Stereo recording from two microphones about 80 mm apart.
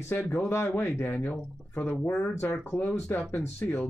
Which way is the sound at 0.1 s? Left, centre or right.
Left.